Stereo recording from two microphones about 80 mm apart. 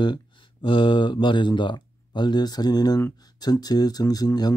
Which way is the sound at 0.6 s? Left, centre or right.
Left.